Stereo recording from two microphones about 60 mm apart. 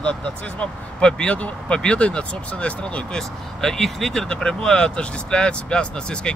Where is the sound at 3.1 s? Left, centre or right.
Centre.